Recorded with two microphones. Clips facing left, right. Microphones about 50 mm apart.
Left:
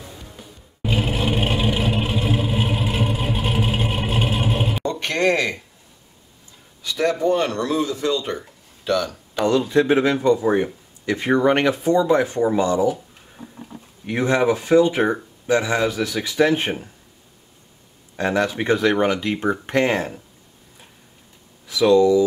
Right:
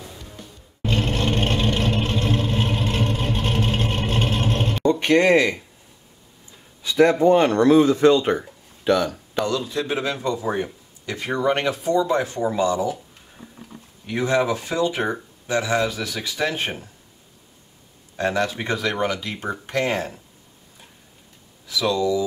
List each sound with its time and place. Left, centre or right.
0.4 s vehicle: centre
4.8 s speech: right
6.8 s speech: right
9.5 s a man's voice: left
10.4 s speech: centre
11.1 s speech: left
14.0 s speech: left
18.1 s speech: left
21.6 s speech: left